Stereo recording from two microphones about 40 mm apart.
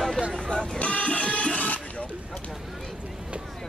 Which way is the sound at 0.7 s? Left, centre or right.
Left.